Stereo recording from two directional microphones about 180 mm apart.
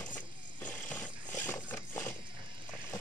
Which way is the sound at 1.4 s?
15° left (ahead or behind).